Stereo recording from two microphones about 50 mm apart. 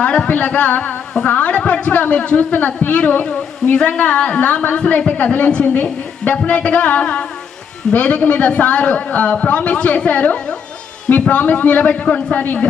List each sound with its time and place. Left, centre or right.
0.0 s a woman's voice: left